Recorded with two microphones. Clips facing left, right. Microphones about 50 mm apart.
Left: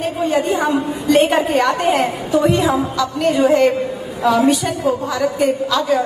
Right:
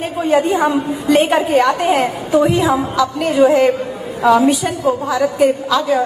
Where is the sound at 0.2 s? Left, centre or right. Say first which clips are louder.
Right 4 dB; centre.